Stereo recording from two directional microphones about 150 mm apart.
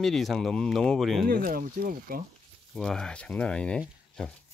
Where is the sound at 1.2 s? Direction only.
70° right (ahead or behind).